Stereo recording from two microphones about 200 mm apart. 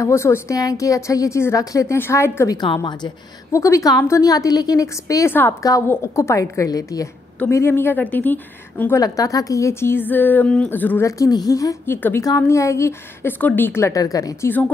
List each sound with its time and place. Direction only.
0.0 s a woman's voice: 15° left (ahead or behind)